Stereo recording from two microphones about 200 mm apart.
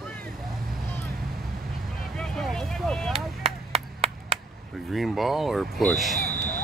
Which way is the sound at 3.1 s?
30° right (ahead or behind).